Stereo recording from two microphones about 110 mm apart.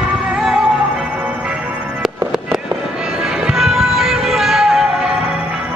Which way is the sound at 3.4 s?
Centre (ahead or behind).